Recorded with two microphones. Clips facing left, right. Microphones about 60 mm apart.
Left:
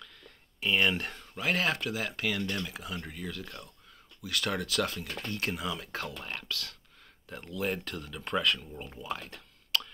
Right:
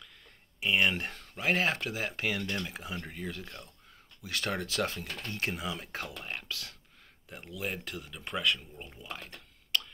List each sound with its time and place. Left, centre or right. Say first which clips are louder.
0.6 s speech: even; centre